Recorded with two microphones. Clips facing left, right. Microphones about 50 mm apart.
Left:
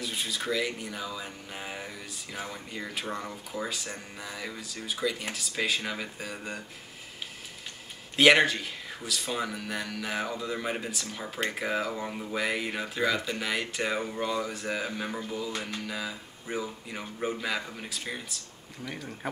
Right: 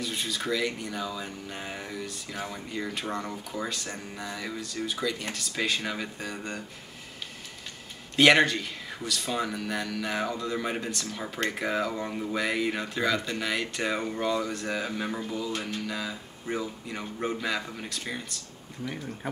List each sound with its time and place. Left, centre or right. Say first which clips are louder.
0.0 s speech: right 1 dB; centre
8.2 s speech: right 1 dB; centre